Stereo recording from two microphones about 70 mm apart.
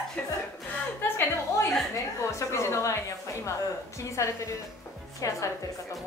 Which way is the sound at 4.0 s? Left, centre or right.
Left.